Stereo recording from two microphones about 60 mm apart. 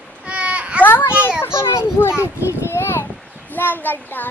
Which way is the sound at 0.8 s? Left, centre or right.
Left.